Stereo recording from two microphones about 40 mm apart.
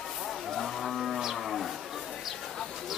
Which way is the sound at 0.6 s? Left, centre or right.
Centre.